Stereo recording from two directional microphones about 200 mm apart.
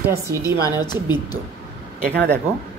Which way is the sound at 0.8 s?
20° left (ahead or behind).